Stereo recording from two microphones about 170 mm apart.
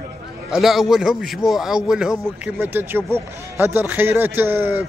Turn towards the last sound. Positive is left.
turn(degrees=-10)  # may be behind; listen again after turning